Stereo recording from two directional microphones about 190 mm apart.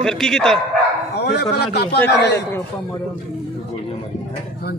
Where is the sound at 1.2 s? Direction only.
60° left (ahead or behind).